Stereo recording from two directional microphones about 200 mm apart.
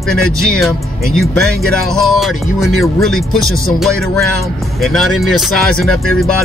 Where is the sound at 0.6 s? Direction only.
Centre (ahead or behind).